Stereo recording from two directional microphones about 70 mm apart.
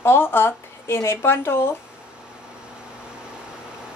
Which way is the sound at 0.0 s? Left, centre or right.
Left.